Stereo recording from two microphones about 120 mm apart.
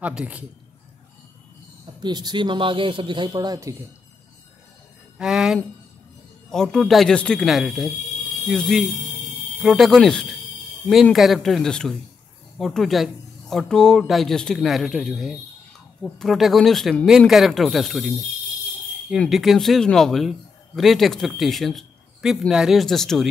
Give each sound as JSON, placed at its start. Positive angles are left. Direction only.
{"t": 0.0, "sound": "a man's voice", "side_deg": -10}
{"t": 2.0, "sound": "speech", "side_deg": -35}
{"t": 5.1, "sound": "music", "side_deg": -5}
{"t": 6.5, "sound": "a man's voice", "side_deg": 5}
{"t": 19.1, "sound": "a man's voice", "side_deg": 0}